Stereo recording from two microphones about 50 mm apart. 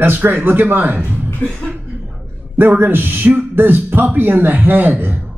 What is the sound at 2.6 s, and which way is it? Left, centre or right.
Speech, right.